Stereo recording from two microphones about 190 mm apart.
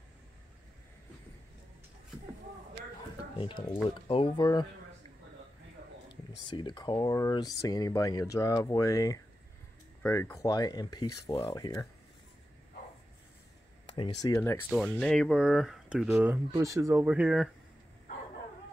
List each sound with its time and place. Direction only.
3.3 s speech: 25° left (ahead or behind)
6.5 s speech: 25° left (ahead or behind)
13.9 s speech: 20° left (ahead or behind)
15.0 s speech: centre (ahead or behind)